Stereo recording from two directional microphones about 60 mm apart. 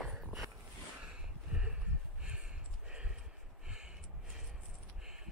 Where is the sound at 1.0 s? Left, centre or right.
Centre.